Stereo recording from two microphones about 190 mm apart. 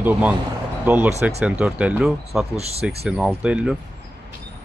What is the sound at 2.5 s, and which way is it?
Speech, 35° right (ahead or behind).